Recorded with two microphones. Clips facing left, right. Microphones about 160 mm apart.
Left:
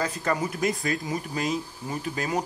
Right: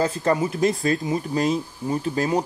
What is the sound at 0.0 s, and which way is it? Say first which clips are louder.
Speech: right 6 dB; 30° right (ahead or behind).